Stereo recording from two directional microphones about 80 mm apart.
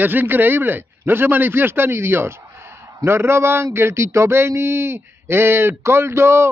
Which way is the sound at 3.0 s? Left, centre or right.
Right.